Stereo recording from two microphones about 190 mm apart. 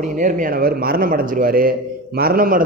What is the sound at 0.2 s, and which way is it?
A man's voice, 45° right (ahead or behind).